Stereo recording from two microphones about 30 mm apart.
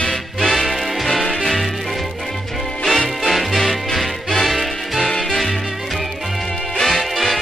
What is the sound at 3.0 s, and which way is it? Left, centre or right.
Music, centre.